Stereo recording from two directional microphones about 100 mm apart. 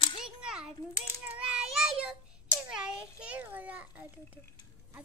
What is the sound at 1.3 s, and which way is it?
Child singing, 10° right (ahead or behind).